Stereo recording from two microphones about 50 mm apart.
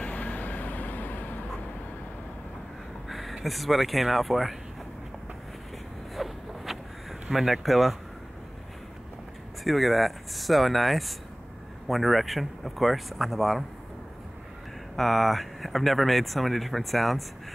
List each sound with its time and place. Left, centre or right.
0.0 s vehicle: left
3.1 s a sound: centre
3.4 s speech: centre
6.1 s zipper: centre
9.7 s speech: centre
15.0 s speech: centre